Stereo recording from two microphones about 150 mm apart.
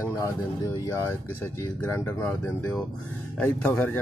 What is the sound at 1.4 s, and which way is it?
Speech, 10° left (ahead or behind).